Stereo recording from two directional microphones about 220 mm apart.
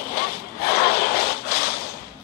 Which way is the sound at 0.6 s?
45° left (ahead or behind).